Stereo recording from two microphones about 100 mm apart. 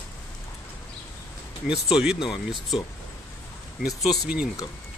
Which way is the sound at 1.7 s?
5° right (ahead or behind).